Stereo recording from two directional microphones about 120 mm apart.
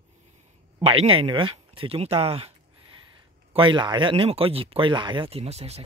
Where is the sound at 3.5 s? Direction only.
45° right (ahead or behind); by 5.8 s 60° right (ahead or behind).